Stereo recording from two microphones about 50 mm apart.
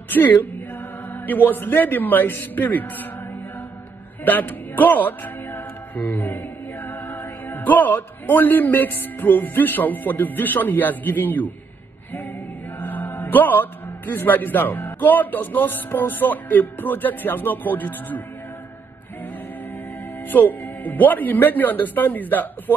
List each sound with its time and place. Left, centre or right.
0.1 s a man's voice: left
4.2 s speech: left
12.7 s a man's voice: left
20.2 s a man's voice: left